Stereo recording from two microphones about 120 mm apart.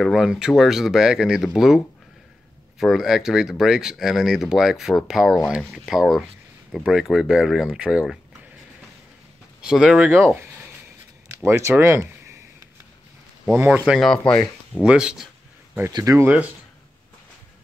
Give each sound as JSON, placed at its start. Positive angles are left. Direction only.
{"t": 0.0, "sound": "speech", "side_deg": 0}
{"t": 2.8, "sound": "speech", "side_deg": 0}
{"t": 9.6, "sound": "speech", "side_deg": -5}
{"t": 10.1, "sound": "speech", "side_deg": -20}
{"t": 13.5, "sound": "speech", "side_deg": -15}
{"t": 13.9, "sound": "speech", "side_deg": 5}
{"t": 14.8, "sound": "speech", "side_deg": -10}
{"t": 15.9, "sound": "speech", "side_deg": -30}